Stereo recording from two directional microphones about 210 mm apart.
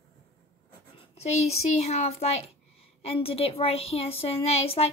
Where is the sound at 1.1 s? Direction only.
30° left (ahead or behind).